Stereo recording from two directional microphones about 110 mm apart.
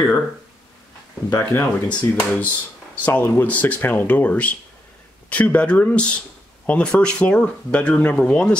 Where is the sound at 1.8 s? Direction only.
15° left (ahead or behind).